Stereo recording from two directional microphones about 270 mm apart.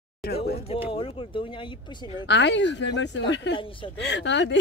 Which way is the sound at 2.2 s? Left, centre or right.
Left.